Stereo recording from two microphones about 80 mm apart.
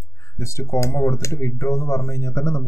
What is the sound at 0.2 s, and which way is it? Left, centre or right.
Speech, left.